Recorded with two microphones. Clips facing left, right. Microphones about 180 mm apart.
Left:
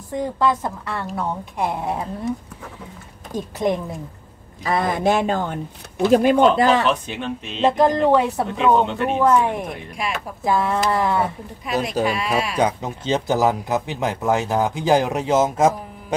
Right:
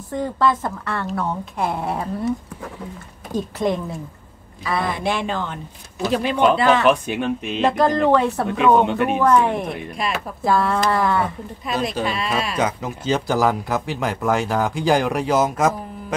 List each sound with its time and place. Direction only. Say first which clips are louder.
0.1 s a woman's voice: even; 15° left (ahead or behind)
3.5 s a woman's voice: left 1 dB; 15° left (ahead or behind)
4.6 s speech: left 3 dB; 45° left (ahead or behind)
6.8 s speech: right 4 dB; 10° right (ahead or behind)
7.6 s a woman's voice: left 1 dB; 20° left (ahead or behind)
8.8 s speech: right 2 dB; 10° right (ahead or behind)
9.2 s a woman's voice: left 1 dB; 10° left (ahead or behind)
12.5 s speech: left 2 dB; 30° left (ahead or behind)